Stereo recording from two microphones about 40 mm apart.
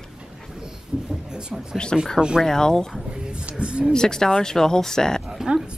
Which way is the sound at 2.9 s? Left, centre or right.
Right.